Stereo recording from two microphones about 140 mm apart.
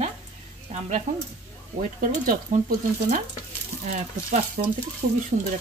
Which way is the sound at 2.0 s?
75° right (ahead or behind).